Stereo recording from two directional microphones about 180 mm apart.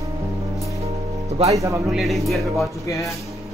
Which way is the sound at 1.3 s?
35° right (ahead or behind).